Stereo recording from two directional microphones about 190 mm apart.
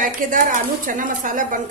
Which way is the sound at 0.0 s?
45° right (ahead or behind).